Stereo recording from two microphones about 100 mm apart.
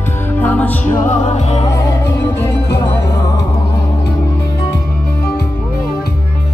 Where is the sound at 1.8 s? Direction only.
35° left (ahead or behind).